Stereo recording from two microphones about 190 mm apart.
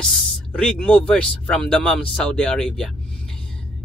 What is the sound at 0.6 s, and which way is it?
Speech, 5° left (ahead or behind).